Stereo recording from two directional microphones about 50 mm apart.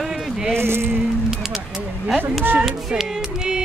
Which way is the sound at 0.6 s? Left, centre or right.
Right.